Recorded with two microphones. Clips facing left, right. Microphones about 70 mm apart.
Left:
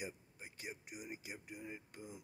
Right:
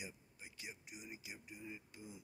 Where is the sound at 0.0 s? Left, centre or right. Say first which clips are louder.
Left 5 dB; left.